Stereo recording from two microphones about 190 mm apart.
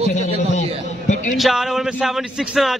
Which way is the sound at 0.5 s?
40° left (ahead or behind).